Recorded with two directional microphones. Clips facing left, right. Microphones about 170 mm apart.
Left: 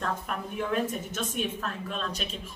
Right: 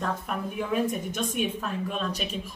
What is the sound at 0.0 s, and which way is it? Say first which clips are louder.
A woman's voice: right 2 dB; 5° right (ahead or behind).